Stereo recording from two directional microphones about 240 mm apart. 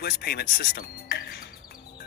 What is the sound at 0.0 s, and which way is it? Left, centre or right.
Speech, left.